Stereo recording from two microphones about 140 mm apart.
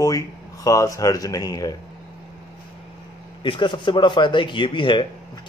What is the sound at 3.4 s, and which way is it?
Speech, 35° left (ahead or behind).